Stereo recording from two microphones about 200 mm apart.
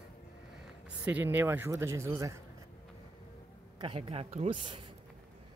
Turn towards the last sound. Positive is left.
turn(degrees=-25)  # may be behind; listen again after turning